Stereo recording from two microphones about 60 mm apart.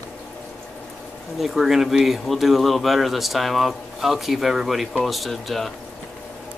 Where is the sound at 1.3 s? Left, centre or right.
Centre.